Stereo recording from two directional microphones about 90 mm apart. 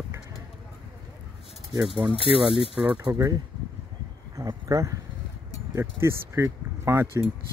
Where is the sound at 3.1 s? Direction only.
40° right (ahead or behind).